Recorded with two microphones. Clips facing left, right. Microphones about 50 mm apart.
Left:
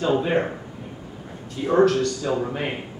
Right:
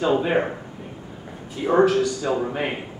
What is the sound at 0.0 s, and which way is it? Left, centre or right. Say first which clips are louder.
A man's voice: right 1 dB; centre.